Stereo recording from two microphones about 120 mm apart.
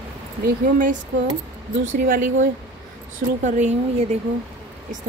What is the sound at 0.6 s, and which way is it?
Speech, 90° right.